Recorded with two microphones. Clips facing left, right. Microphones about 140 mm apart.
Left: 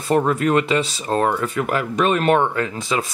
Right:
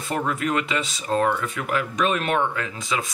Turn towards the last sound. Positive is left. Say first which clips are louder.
# left 5 dB
turn(degrees=35)  # may be behind; listen again after turning